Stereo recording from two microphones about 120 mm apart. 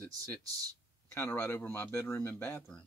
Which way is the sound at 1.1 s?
20° left (ahead or behind).